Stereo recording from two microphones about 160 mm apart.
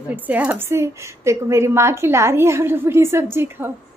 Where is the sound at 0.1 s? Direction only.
10° right (ahead or behind).